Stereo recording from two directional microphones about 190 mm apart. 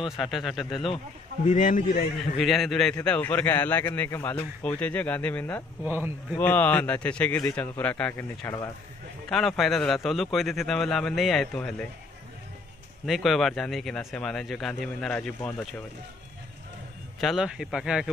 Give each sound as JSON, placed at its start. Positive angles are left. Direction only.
{"t": 0.2, "sound": "speech", "side_deg": 0}
{"t": 1.5, "sound": "speech", "side_deg": 40}
{"t": 2.3, "sound": "a man's voice", "side_deg": 0}
{"t": 5.9, "sound": "a man's voice", "side_deg": -10}
{"t": 6.3, "sound": "a man's voice", "side_deg": 10}
{"t": 9.3, "sound": "speech", "side_deg": 0}
{"t": 13.0, "sound": "speech", "side_deg": 0}
{"t": 17.2, "sound": "speech", "side_deg": 0}